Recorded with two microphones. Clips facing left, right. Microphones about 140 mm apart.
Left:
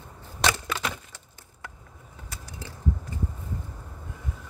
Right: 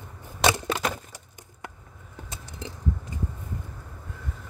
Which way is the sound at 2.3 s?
20° right (ahead or behind).